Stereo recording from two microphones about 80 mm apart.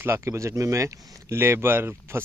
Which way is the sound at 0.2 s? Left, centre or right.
Right.